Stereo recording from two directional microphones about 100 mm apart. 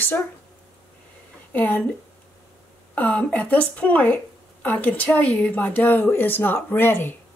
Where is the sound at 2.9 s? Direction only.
15° left (ahead or behind).